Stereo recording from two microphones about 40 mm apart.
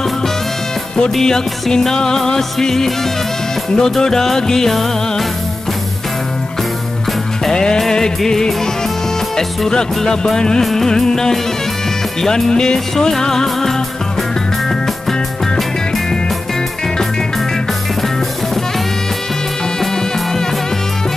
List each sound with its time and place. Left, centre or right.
1.1 s music: centre
7.4 s music: centre
10.6 s music: centre